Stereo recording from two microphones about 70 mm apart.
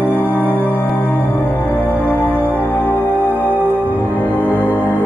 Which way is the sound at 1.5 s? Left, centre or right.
Left.